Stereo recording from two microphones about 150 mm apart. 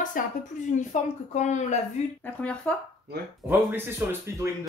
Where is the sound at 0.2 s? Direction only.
65° left (ahead or behind).